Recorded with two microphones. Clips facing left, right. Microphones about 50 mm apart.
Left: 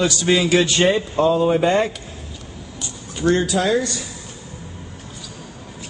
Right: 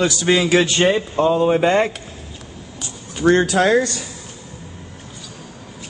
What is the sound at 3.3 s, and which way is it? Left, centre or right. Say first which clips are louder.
Speech: right 3 dB; right.